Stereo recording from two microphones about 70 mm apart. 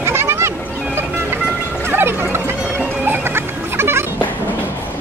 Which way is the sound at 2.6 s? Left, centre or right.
Right.